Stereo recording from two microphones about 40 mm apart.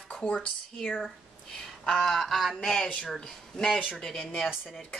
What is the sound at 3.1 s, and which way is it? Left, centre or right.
Speech, centre.